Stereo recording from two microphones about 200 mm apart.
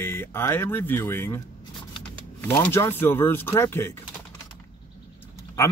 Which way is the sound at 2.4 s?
10° left (ahead or behind).